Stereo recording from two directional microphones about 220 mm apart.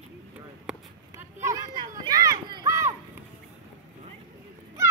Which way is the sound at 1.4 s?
15° right (ahead or behind).